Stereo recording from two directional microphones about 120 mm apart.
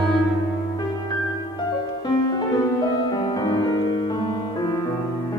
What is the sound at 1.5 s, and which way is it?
Music, 35° left (ahead or behind).